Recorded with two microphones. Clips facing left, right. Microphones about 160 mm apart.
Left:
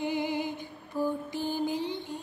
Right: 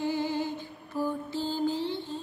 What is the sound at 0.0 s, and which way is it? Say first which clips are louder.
Music: right 1 dB; 15° left (ahead or behind).